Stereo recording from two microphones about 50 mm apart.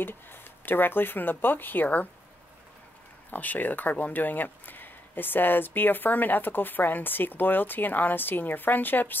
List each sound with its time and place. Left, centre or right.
0.0 s speech: left
3.3 s speech: left